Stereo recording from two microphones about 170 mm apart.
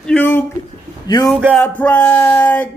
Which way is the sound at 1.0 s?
25° left (ahead or behind).